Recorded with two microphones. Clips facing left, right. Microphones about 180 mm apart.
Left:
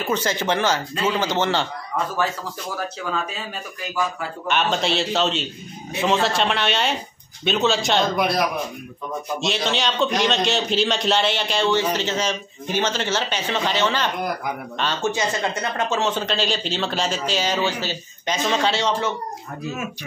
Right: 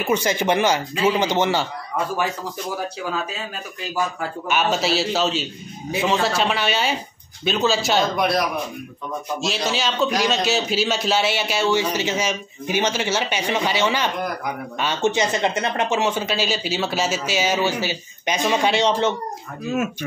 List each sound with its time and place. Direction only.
0.0 s a man's voice: 15° right (ahead or behind)
3.1 s a man's voice: centre (ahead or behind)
4.5 s a man's voice: 5° right (ahead or behind); by 19.1 s 20° right (ahead or behind)
19.7 s speech: 50° right (ahead or behind)